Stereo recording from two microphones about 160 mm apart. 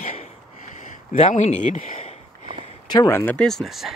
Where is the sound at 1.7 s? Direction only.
55° left (ahead or behind).